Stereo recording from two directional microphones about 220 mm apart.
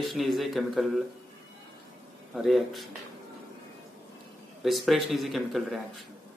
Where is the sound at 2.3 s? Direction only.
Centre (ahead or behind).